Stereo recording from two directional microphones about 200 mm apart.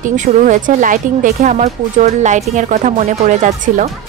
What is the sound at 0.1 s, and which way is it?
Speech, 40° right (ahead or behind).